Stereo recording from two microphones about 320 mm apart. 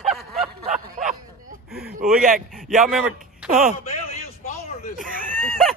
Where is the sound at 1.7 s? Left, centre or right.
Right.